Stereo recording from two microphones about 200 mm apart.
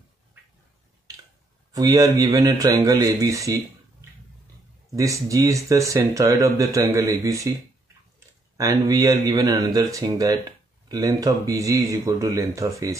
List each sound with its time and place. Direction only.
1.7 s speech: 15° right (ahead or behind)
4.9 s speech: 15° right (ahead or behind)
8.5 s speech: 15° right (ahead or behind)